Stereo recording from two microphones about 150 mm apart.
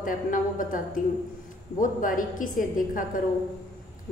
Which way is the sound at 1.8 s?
65° left (ahead or behind).